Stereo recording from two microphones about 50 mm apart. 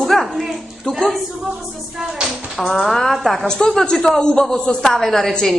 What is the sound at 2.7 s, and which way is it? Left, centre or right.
A woman's voice, centre.